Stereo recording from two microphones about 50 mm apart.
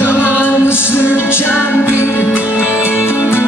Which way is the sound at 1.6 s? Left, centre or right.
Left.